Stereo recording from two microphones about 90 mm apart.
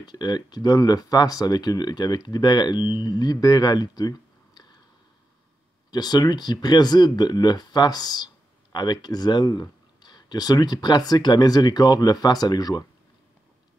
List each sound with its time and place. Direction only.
0.0 s speech: 50° left (ahead or behind)
5.9 s speech: 50° left (ahead or behind)